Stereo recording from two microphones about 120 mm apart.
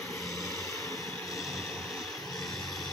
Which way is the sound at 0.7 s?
25° left (ahead or behind).